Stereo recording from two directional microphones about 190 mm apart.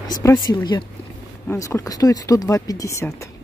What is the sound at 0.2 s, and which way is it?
Speech, 20° left (ahead or behind).